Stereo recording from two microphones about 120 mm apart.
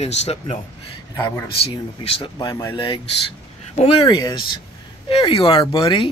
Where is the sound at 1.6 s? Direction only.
50° left (ahead or behind).